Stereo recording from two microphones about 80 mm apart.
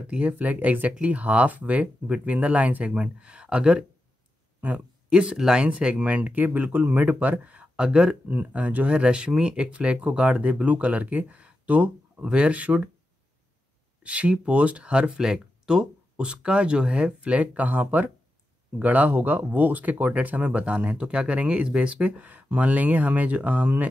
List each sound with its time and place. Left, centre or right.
0.0 s speech: centre
14.0 s speech: centre